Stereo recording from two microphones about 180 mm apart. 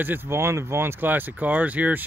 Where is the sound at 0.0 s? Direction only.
15° right (ahead or behind).